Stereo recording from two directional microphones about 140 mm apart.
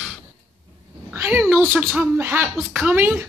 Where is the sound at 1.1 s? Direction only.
15° right (ahead or behind).